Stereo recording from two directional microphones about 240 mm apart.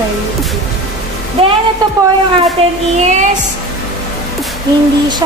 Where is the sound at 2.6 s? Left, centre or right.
Right.